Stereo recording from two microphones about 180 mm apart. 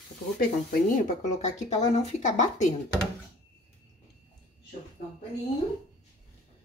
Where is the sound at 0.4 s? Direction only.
50° left (ahead or behind).